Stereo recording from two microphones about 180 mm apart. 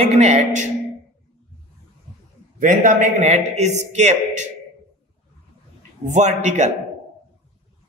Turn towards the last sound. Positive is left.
turn(degrees=-40)  # may be behind; listen again after turning